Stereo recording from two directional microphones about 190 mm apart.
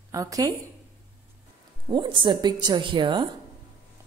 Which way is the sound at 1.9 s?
25° right (ahead or behind).